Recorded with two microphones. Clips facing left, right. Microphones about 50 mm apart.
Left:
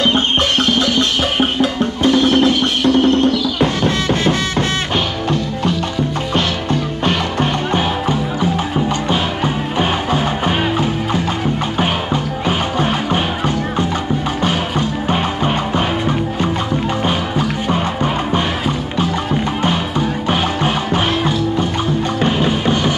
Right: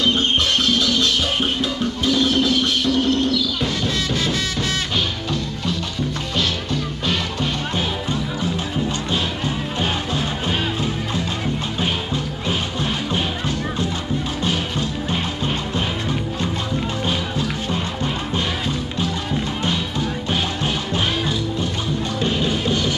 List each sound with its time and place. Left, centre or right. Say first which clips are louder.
0.7 s music: left 4 dB; left
6.3 s music: left 5 dB; left
14.4 s music: left 5 dB; left
19.6 s music: left 6 dB; left